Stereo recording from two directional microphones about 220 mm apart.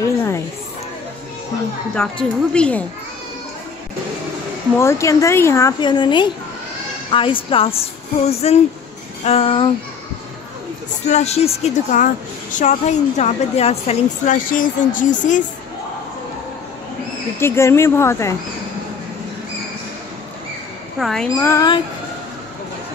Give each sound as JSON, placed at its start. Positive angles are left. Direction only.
{"t": 2.0, "sound": "a woman's voice", "side_deg": 5}
{"t": 4.7, "sound": "a woman's voice", "side_deg": 10}
{"t": 11.1, "sound": "a woman's voice", "side_deg": 30}
{"t": 17.4, "sound": "a woman's voice", "side_deg": 10}
{"t": 21.0, "sound": "a woman's voice", "side_deg": 0}
{"t": 21.4, "sound": "a woman's voice", "side_deg": 15}